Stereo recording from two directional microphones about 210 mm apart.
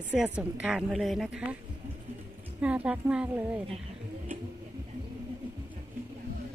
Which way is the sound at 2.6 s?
5° right (ahead or behind).